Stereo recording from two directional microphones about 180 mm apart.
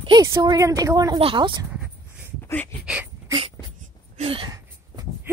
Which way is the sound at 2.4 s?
10° left (ahead or behind).